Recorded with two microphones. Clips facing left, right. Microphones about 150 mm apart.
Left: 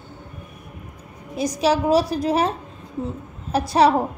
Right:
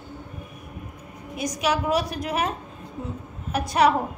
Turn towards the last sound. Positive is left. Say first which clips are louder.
# left 3 dB
turn(degrees=30)  # may be behind; listen again after turning